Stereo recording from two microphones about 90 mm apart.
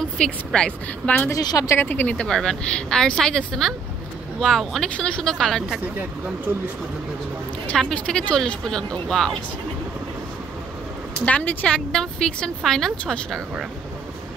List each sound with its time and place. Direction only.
0.0 s a woman's voice: 5° left (ahead or behind)
1.3 s speech: 45° left (ahead or behind)
1.8 s a woman's voice: 20° left (ahead or behind)
7.7 s a woman's voice: 5° left (ahead or behind)
11.2 s a woman's voice: 15° left (ahead or behind)